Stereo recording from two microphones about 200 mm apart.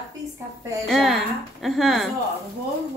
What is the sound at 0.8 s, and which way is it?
A woman's voice, centre (ahead or behind).